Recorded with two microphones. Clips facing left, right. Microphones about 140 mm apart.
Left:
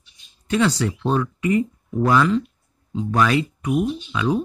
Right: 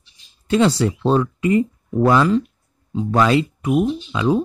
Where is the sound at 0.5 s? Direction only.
30° right (ahead or behind).